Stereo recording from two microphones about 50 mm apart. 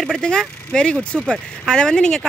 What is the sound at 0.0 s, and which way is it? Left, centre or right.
Speech, centre.